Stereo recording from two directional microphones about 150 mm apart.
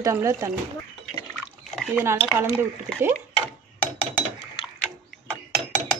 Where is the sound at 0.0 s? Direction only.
20° right (ahead or behind).